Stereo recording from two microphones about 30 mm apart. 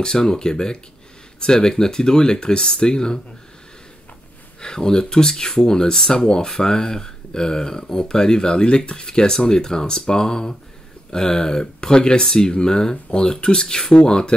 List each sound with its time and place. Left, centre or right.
0.0 s speech: left
4.6 s speech: left